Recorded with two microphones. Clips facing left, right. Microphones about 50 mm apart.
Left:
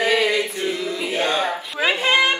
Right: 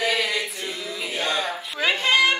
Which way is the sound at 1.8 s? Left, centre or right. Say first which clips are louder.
Left 2 dB; centre.